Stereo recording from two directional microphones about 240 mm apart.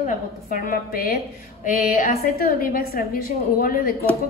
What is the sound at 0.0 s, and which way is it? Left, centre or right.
A woman's voice, left.